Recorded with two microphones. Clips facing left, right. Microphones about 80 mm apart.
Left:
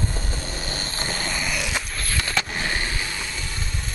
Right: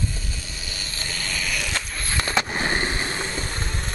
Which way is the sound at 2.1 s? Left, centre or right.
Right.